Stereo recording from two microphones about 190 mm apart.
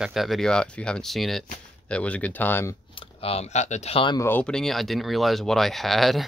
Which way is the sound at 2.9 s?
30° left (ahead or behind).